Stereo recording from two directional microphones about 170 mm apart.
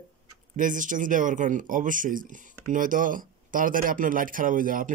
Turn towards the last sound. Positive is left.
turn(degrees=-55)  # may be behind; listen again after turning